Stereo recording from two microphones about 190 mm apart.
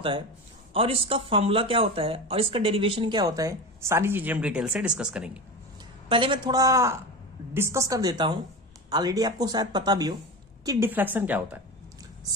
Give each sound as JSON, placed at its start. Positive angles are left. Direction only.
{"t": 0.7, "sound": "speech", "side_deg": -30}
{"t": 6.0, "sound": "a woman's voice", "side_deg": -25}